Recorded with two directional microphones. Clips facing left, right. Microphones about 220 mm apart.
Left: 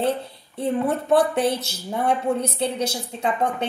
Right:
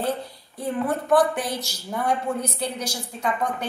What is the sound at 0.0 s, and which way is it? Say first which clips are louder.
A woman's voice: left 3 dB; 25° left (ahead or behind).